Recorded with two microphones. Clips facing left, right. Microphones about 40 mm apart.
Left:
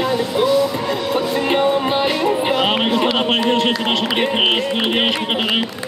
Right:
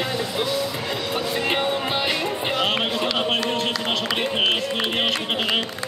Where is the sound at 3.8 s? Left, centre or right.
Left.